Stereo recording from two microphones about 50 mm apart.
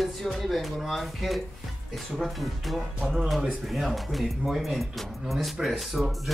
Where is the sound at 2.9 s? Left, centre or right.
Centre.